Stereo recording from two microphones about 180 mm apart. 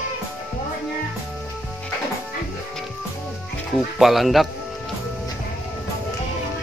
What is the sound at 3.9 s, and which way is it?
Speech, centre (ahead or behind).